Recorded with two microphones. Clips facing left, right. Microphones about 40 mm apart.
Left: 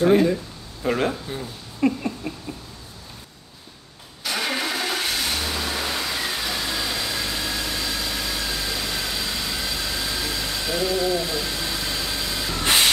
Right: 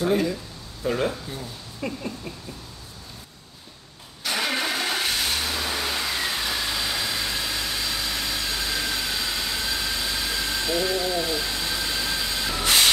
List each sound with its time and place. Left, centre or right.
0.0 s speech: left
1.8 s a sound: left
4.2 s vehicle: centre